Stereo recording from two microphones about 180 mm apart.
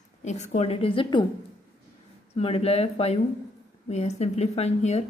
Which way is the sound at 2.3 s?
35° left (ahead or behind).